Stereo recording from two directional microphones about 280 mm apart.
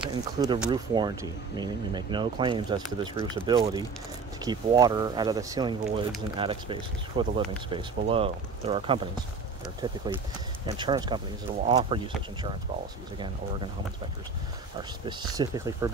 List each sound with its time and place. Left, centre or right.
0.1 s speech: centre
15.3 s speech: centre